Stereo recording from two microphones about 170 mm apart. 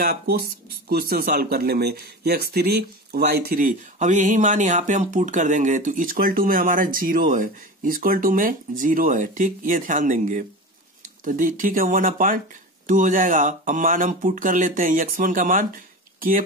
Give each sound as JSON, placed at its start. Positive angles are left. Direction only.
{"t": 0.0, "sound": "speech", "side_deg": -60}